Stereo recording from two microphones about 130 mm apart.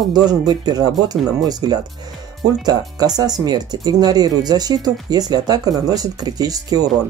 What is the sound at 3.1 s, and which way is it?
Speech, 30° right (ahead or behind).